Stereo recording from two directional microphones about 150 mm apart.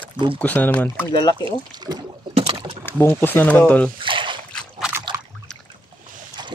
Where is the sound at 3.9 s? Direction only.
35° right (ahead or behind).